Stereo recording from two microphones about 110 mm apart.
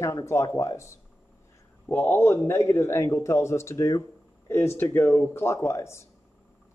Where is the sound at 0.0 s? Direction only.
25° left (ahead or behind).